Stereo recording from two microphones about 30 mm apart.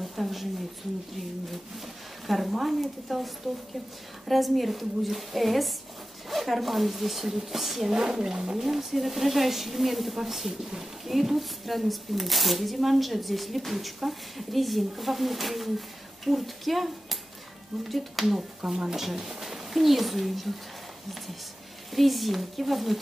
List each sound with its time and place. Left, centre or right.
0.0 s a sound: centre
2.2 s a woman's voice: centre
4.3 s speech: centre
7.9 s speech: right; by 18.2 s centre
18.2 s speech: centre
21.9 s speech: centre